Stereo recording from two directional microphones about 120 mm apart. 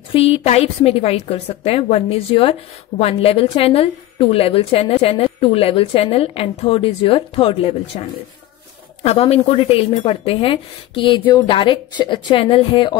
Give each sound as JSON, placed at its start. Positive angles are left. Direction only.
{"t": 0.1, "sound": "a woman's voice", "side_deg": 55}
{"t": 9.0, "sound": "a woman's voice", "side_deg": 60}